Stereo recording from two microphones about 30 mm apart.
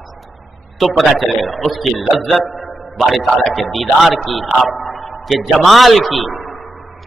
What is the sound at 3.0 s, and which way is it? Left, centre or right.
A man's voice, centre.